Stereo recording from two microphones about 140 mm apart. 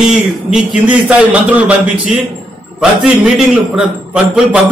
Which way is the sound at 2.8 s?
5° right (ahead or behind).